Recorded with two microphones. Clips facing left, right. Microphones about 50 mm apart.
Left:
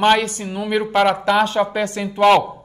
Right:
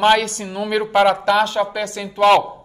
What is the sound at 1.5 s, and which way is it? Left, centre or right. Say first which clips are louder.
Speech: left 2 dB; left.